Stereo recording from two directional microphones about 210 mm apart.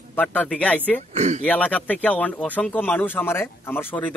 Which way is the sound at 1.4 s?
5° left (ahead or behind).